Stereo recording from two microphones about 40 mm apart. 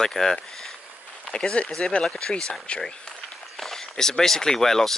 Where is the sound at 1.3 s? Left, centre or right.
Left.